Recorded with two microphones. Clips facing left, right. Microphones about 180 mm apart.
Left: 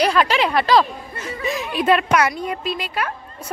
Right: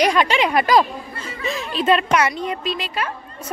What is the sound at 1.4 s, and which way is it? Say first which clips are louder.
Speech: left 1 dB; 15° left (ahead or behind).